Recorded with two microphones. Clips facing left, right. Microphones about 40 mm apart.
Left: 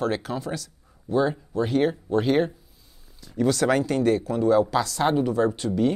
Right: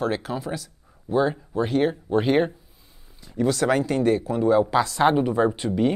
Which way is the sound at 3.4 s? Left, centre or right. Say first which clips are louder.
Even; centre.